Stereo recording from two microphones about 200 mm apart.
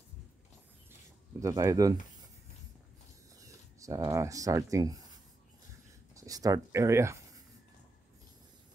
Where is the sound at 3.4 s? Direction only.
15° right (ahead or behind).